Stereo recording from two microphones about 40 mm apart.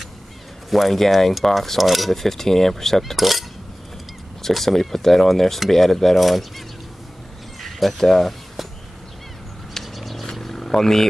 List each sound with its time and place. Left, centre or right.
0.7 s speech: centre
7.6 s crow: centre
9.9 s a sound: centre